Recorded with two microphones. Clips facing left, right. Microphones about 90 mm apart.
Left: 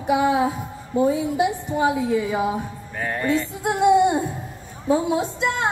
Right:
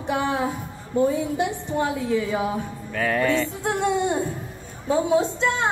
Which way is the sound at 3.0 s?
90° right.